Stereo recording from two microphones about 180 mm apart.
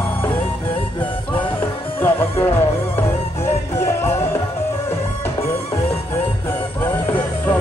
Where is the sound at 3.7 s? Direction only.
15° left (ahead or behind).